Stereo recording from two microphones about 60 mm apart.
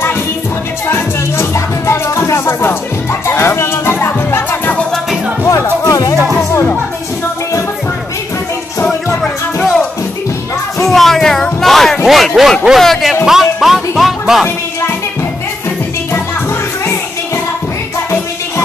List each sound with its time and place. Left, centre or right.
0.8 s music: left
5.9 s music: left
8.8 s music: centre
10.8 s music: centre
12.0 s speech: centre
12.7 s music: centre